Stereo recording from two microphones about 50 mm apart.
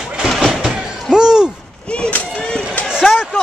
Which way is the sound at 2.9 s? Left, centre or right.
Centre.